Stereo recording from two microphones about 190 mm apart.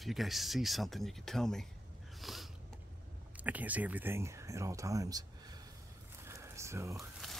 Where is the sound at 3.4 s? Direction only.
10° right (ahead or behind).